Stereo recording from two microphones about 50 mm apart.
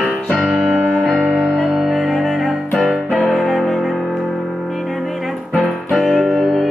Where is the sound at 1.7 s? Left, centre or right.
Centre.